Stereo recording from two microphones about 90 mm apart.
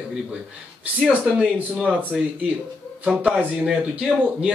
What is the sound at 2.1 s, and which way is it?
Speech, 5° right (ahead or behind).